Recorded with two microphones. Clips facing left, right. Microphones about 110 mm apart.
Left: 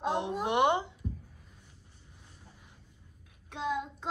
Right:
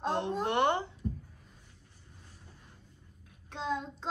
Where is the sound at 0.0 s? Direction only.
15° left (ahead or behind).